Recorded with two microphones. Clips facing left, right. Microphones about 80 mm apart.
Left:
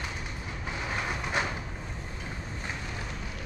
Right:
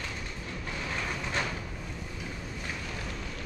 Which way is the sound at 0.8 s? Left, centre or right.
Centre.